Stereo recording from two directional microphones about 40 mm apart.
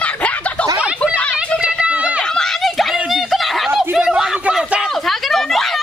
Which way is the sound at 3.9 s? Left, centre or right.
Centre.